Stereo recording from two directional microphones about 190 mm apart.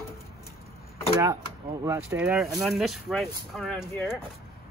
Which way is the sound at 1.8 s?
10° right (ahead or behind).